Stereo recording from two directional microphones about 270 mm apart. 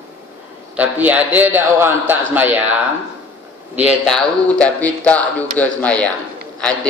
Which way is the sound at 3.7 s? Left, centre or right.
Centre.